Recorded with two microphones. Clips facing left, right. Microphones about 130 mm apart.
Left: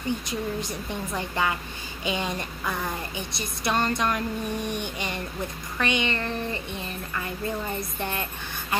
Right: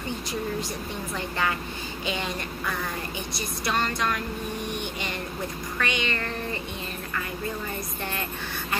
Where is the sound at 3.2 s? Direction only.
25° left (ahead or behind).